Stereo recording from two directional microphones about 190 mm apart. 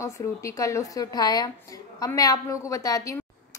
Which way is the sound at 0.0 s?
15° left (ahead or behind).